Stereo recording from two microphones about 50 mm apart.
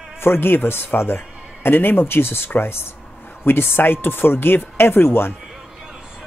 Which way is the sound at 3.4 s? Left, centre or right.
Left.